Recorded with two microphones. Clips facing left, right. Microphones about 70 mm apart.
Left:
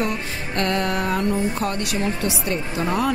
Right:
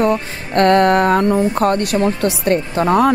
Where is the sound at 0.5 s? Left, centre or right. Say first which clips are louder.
Right 11 dB; right.